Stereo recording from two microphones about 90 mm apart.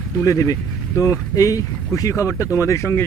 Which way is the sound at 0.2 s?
35° left (ahead or behind).